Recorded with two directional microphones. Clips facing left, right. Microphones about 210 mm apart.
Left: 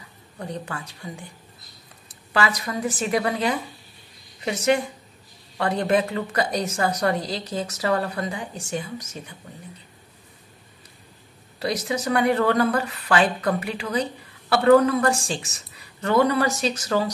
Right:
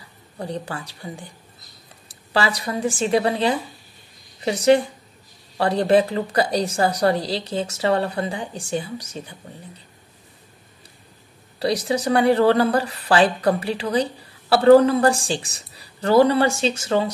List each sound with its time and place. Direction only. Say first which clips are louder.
0.4 s speech: right 3 dB; 30° right (ahead or behind)
11.6 s speech: right 4 dB; 30° right (ahead or behind)